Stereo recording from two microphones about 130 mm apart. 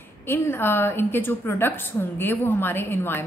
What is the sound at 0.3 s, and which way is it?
A woman's voice, 15° left (ahead or behind).